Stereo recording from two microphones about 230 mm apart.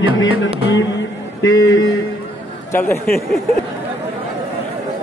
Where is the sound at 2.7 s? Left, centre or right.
Centre.